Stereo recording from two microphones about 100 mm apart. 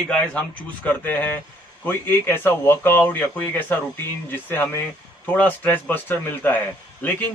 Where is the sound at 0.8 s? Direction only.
20° left (ahead or behind).